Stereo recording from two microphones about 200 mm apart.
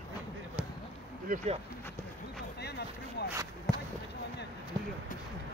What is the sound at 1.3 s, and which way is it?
Speech, 35° right (ahead or behind).